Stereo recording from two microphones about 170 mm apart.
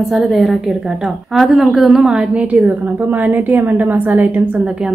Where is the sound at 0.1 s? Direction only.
Centre (ahead or behind).